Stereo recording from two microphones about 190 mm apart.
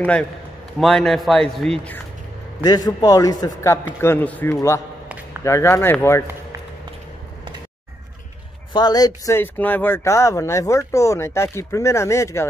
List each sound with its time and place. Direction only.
0.7 s speech: centre (ahead or behind)
2.6 s a man's voice: 20° left (ahead or behind)
8.7 s speech: 20° left (ahead or behind)